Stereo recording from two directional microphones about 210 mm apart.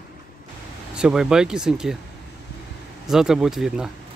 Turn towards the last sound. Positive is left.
turn(degrees=-5)  # may be behind; listen again after turning